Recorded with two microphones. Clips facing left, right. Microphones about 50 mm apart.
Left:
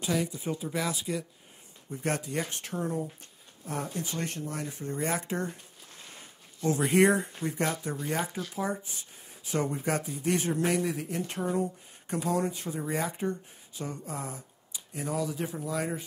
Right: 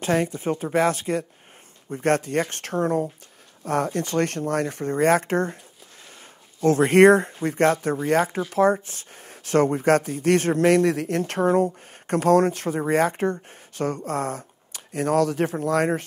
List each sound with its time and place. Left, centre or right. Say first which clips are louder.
0.0 s speech: right 8 dB; right
6.6 s speech: right 9 dB; right